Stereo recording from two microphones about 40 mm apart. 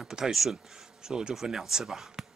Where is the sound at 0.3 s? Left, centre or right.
Centre.